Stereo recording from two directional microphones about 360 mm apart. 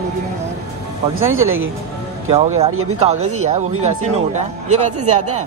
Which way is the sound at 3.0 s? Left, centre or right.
Centre.